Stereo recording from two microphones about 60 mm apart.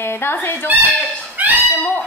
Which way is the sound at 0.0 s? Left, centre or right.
Left.